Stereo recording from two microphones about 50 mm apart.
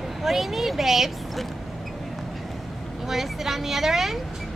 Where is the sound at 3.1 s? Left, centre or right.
Centre.